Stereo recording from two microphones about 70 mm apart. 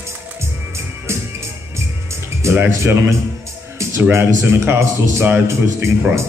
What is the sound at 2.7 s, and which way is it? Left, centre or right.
Speech, right.